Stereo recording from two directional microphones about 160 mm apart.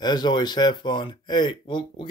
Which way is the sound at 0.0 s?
25° left (ahead or behind).